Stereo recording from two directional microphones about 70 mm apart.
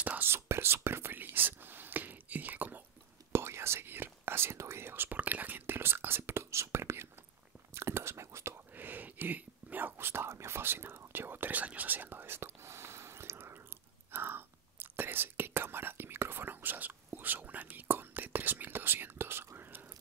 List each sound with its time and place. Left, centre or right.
0.0 s whispering: right
0.3 s whispering: right
3.3 s whispering: right
8.7 s whispering: right